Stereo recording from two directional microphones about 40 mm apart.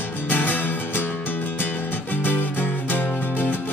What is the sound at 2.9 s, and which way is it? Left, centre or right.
Music, left.